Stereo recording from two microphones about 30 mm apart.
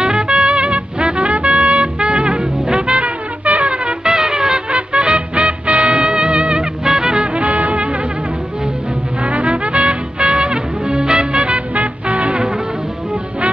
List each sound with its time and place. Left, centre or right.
0.0 s trumpet: right
3.0 s music: right
4.1 s music: right
4.6 s music: right
6.9 s music: right
7.3 s music: right
9.2 s music: right
11.7 s music: right